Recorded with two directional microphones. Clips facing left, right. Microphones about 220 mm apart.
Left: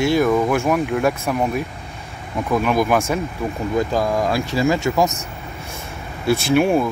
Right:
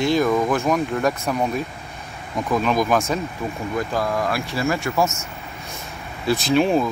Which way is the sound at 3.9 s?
20° left (ahead or behind).